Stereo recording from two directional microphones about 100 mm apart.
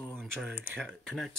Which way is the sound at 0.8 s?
5° left (ahead or behind).